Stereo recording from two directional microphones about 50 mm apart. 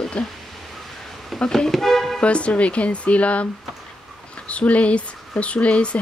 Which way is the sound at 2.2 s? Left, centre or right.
Left.